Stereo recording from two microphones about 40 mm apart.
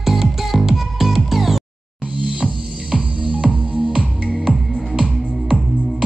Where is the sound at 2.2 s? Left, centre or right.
Right.